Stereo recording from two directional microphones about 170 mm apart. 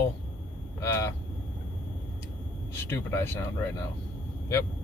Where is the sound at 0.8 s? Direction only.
15° left (ahead or behind).